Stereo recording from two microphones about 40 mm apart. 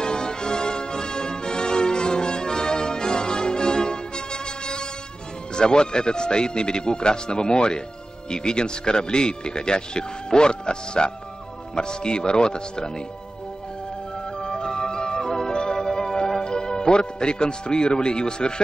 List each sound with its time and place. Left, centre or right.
0.0 s music: centre
5.6 s speech: left
14.4 s music: left